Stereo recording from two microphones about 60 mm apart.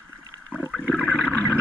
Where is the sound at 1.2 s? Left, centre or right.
Left.